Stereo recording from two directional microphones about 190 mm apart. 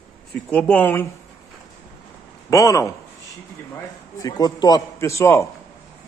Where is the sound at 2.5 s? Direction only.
15° left (ahead or behind).